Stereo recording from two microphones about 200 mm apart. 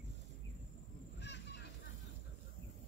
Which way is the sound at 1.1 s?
60° left (ahead or behind).